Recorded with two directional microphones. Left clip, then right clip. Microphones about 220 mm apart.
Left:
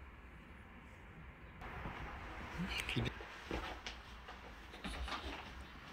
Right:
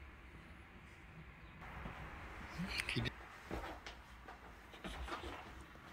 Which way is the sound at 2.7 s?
Centre (ahead or behind).